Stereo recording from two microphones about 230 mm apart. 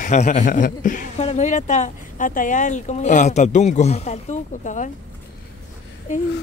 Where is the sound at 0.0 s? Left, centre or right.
Left.